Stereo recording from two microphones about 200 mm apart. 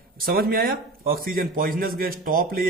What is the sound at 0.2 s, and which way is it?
A man's voice, 50° right (ahead or behind).